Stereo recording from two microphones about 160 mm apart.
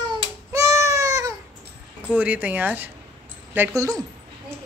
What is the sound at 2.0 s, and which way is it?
Speech, 10° right (ahead or behind).